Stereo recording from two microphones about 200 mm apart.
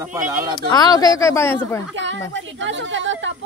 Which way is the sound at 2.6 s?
65° right (ahead or behind).